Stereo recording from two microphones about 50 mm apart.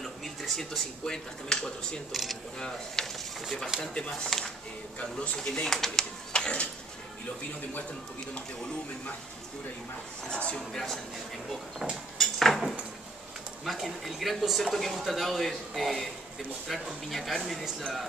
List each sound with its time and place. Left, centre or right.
0.0 s a sound: centre
1.0 s speech: centre
3.0 s speech: centre
4.3 s speech: centre
4.9 s speech: left
6.3 s a sound: centre
10.2 s speech: centre
12.2 s a sound: centre
13.7 s speech: centre